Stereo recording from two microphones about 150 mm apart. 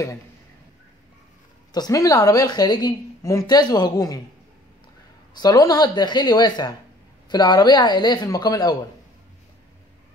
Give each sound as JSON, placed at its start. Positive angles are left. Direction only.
{"t": 1.7, "sound": "a woman's voice", "side_deg": 25}
{"t": 5.3, "sound": "a woman's voice", "side_deg": 25}